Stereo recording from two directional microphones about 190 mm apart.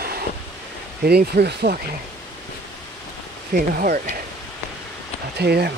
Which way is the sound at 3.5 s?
50° right (ahead or behind).